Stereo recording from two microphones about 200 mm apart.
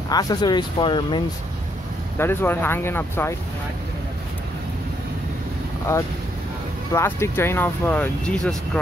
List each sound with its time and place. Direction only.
0.1 s speech: 20° left (ahead or behind)
2.1 s speech: 10° left (ahead or behind)
6.9 s speech: 15° left (ahead or behind)